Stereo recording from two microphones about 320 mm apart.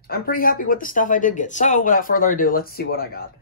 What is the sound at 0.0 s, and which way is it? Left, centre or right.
Speech, left.